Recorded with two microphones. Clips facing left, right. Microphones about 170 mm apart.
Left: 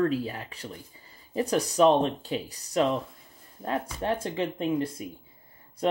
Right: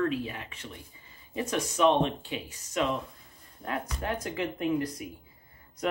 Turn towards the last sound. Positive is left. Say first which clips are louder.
# left 1 dB
turn(degrees=25)  # may be behind; listen again after turning